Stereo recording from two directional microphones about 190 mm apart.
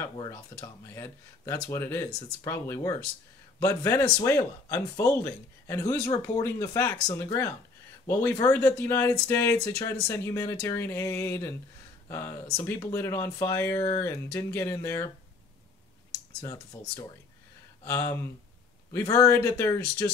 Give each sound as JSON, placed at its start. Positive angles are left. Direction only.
{"t": 0.2, "sound": "speech", "side_deg": 15}
{"t": 16.3, "sound": "speech", "side_deg": 15}